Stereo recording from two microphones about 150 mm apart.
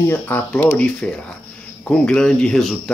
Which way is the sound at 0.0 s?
15° left (ahead or behind).